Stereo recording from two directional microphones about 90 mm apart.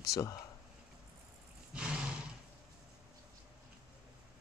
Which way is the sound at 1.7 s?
10° right (ahead or behind).